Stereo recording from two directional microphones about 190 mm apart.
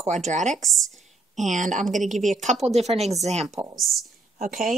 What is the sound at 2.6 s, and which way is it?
Speech, 35° right (ahead or behind).